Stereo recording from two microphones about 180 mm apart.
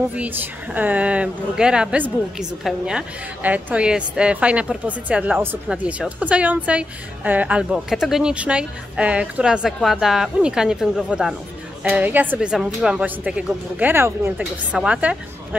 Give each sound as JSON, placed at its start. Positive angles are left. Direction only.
{"t": 0.1, "sound": "a woman's voice", "side_deg": -10}